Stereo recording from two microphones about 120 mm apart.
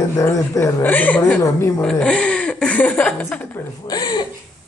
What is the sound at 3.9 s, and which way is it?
Speech, 35° left (ahead or behind).